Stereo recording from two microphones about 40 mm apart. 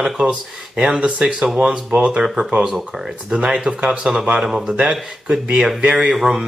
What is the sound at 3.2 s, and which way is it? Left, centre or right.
Speech, right.